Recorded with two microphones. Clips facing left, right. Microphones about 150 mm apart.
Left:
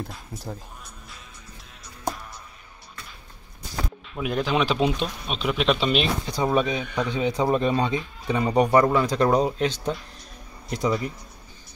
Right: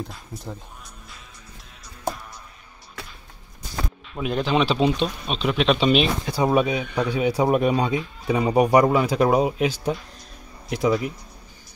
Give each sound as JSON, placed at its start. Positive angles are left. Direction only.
{"t": 0.1, "sound": "speech", "side_deg": 0}
{"t": 4.2, "sound": "speech", "side_deg": -20}
{"t": 4.5, "sound": "speech", "side_deg": 10}